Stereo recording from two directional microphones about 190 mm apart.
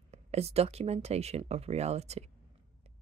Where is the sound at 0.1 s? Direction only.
35° right (ahead or behind).